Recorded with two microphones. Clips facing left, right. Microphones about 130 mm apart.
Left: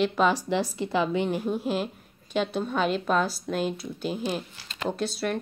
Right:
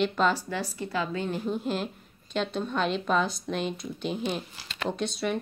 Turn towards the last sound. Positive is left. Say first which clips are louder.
# left 1 dB
turn(degrees=0)  # may be behind; listen again after turning